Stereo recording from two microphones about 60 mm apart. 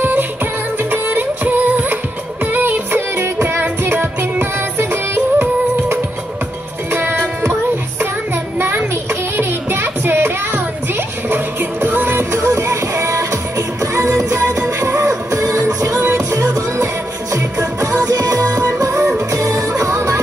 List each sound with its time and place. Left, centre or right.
0.0 s music: right
8.5 s a sound: right
9.4 s child singing: right
11.2 s music: right
12.4 s music: right